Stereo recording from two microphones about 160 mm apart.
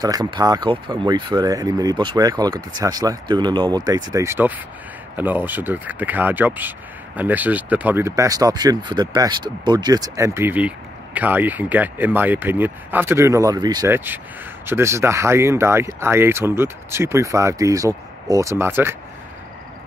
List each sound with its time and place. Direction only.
0.0 s speech: 25° right (ahead or behind)
13.9 s speech: 10° right (ahead or behind)